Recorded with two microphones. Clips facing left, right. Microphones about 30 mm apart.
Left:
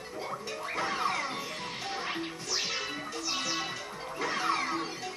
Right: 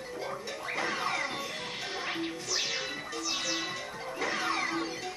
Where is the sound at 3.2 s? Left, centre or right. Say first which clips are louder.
Even; centre.